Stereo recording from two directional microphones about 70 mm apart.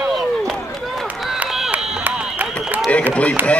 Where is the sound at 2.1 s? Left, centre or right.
Right.